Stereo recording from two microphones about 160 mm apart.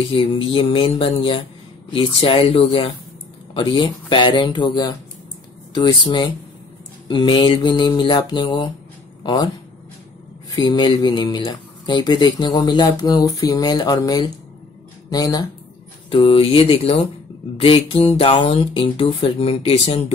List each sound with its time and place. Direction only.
0.1 s speech: 35° left (ahead or behind)
10.5 s speech: 30° left (ahead or behind)